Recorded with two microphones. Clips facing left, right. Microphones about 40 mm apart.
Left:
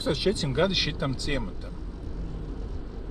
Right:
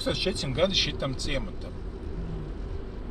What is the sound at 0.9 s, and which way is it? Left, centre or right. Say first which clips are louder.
Speech: left 1 dB; centre.